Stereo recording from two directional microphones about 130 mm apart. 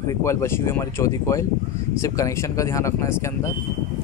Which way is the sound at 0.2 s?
20° left (ahead or behind).